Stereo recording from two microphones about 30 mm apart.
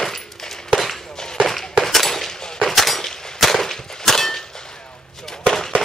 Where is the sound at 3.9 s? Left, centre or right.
Centre.